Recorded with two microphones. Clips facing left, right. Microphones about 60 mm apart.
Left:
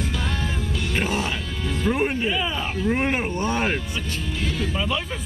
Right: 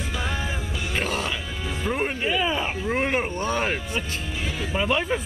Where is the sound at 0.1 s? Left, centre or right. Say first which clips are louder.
Left 1 dB; centre.